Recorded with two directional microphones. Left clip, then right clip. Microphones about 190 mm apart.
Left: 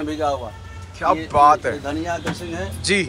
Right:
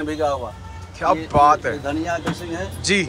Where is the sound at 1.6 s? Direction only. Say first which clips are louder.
Even; centre (ahead or behind).